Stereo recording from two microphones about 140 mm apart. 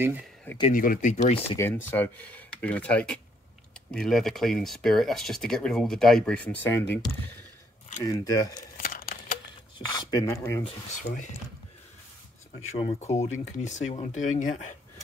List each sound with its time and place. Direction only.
0.0 s speech: 15° right (ahead or behind)
0.7 s speech: 70° left (ahead or behind); by 1.4 s 55° left (ahead or behind)
1.6 s speech: 15° left (ahead or behind)
8.0 s speech: 25° left (ahead or behind)
8.7 s tearing: 90° left
9.8 s speech: 30° left (ahead or behind)
12.7 s speech: 45° left (ahead or behind)